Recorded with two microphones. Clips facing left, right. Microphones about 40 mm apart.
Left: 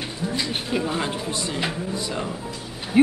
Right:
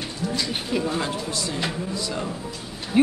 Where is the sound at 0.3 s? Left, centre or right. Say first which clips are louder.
Even; centre.